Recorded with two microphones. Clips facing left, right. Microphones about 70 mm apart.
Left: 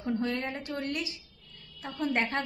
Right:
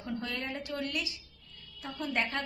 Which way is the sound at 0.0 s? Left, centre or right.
Left.